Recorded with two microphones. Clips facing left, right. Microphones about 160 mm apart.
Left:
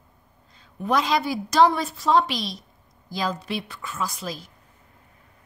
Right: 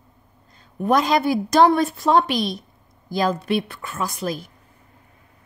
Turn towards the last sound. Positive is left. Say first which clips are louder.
# right 4 dB
turn(degrees=-55)  # may be behind; listen again after turning